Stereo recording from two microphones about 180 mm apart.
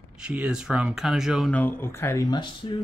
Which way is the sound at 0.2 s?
5° right (ahead or behind).